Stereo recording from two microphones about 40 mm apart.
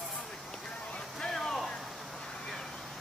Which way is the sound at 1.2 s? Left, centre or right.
Centre.